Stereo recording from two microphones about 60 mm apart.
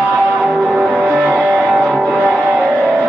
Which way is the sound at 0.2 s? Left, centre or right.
Right.